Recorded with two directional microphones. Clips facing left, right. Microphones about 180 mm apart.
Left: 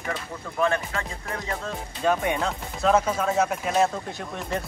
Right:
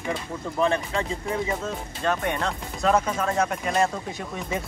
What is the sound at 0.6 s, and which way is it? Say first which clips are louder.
Speech: right 1 dB; 30° right (ahead or behind).